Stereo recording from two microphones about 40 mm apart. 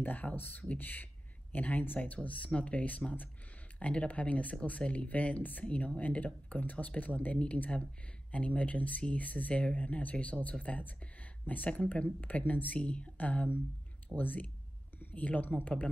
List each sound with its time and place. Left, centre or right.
0.0 s speech: left
2.2 s speech: left